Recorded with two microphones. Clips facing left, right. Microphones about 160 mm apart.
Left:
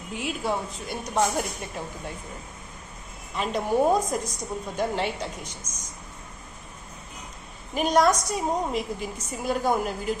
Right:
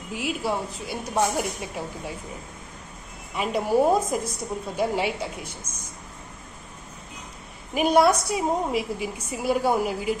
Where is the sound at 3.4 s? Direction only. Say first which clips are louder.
Right 2 dB; 5° right (ahead or behind).